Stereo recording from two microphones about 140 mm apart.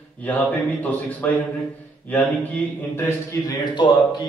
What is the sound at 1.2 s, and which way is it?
Speech, 10° left (ahead or behind).